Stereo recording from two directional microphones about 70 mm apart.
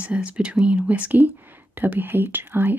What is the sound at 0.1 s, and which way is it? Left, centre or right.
Speech, centre.